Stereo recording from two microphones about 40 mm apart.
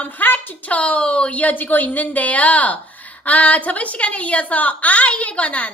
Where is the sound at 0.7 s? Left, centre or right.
Left.